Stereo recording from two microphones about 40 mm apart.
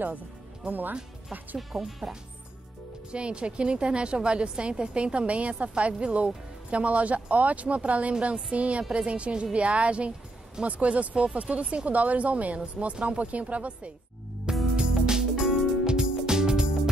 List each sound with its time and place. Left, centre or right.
0.7 s speech: right
1.6 s speech: centre
3.1 s a woman's voice: right
12.9 s a woman's voice: right
13.2 s a woman's voice: right
14.8 s music: centre